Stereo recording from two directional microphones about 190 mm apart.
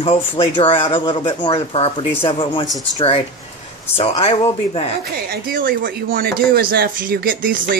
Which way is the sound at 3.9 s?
30° left (ahead or behind).